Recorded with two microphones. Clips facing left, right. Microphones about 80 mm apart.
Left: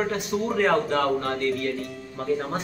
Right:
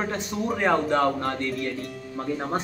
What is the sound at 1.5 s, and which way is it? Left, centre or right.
Speech, centre.